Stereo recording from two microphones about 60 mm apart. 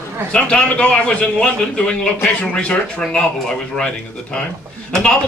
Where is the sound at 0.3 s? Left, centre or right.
Centre.